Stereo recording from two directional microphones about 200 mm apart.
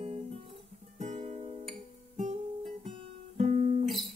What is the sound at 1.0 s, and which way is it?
Music, 35° right (ahead or behind).